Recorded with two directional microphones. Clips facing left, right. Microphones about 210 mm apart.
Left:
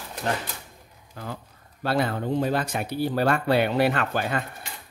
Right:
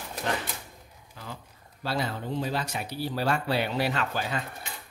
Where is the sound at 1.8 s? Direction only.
55° left (ahead or behind).